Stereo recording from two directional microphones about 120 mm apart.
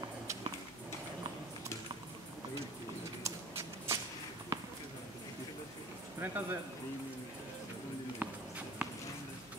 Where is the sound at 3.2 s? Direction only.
25° right (ahead or behind).